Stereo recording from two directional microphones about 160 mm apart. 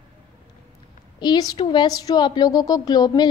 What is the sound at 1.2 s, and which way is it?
A woman's voice, 25° left (ahead or behind).